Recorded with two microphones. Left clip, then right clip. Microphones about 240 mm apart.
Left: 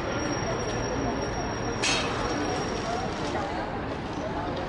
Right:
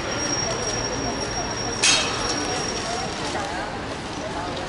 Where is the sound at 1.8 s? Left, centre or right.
Centre.